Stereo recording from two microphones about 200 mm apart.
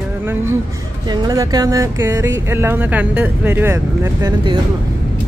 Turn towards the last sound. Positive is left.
turn(degrees=-20)  # may be behind; listen again after turning